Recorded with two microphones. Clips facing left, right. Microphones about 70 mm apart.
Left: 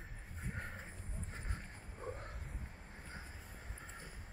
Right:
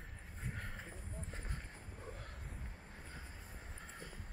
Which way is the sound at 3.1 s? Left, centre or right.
Centre.